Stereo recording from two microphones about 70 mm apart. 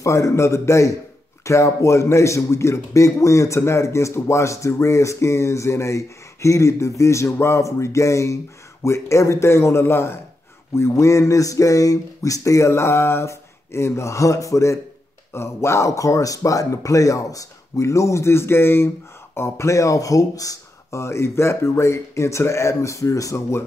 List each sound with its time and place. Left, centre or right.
0.0 s speech: left